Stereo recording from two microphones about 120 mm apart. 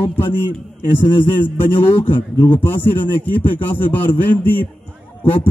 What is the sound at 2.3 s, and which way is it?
Speech, 15° left (ahead or behind).